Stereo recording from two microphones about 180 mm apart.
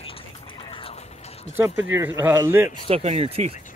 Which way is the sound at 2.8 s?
35° right (ahead or behind).